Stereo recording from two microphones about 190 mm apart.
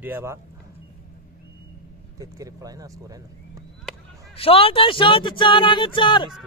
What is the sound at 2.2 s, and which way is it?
Speech, 20° right (ahead or behind).